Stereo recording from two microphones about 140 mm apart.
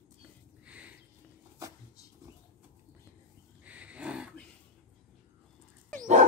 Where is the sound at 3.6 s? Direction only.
10° right (ahead or behind).